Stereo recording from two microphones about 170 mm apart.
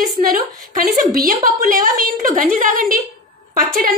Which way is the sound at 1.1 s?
55° right (ahead or behind).